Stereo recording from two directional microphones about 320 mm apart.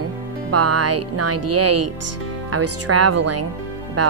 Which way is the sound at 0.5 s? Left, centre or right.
Right.